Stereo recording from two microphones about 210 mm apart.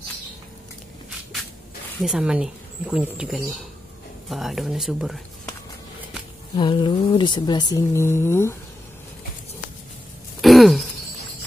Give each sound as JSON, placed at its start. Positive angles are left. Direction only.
{"t": 2.0, "sound": "a woman's voice", "side_deg": -5}
{"t": 6.5, "sound": "speech", "side_deg": 20}
{"t": 10.4, "sound": "a sound", "side_deg": 0}